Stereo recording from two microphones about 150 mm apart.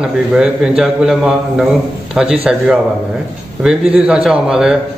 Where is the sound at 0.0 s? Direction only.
5° right (ahead or behind).